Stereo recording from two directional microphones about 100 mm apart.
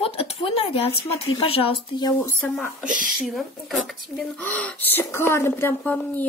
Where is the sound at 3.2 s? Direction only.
Centre (ahead or behind).